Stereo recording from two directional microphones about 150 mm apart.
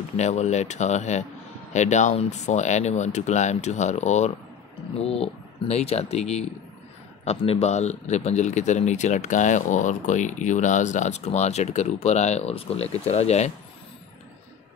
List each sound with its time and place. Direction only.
0.2 s a man's voice: 50° left (ahead or behind)